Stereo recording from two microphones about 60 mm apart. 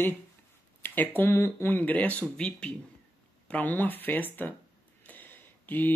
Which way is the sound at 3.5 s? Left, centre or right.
Left.